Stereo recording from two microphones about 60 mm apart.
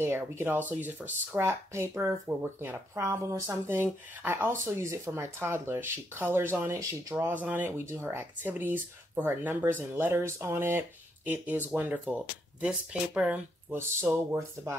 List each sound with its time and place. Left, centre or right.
0.0 s speech: right
0.6 s speech: right
1.4 s speech: right
3.0 s speech: right
3.6 s speech: right
4.5 s speech: right
6.7 s speech: right
7.2 s speech: right
7.7 s speech: right
13.7 s speech: right